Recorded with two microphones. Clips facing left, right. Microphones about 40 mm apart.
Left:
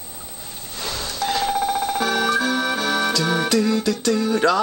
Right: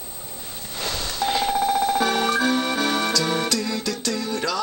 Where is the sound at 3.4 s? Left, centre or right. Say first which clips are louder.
Left 6 dB; centre.